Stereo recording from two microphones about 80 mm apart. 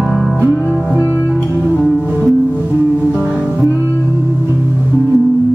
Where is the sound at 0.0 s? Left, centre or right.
Centre.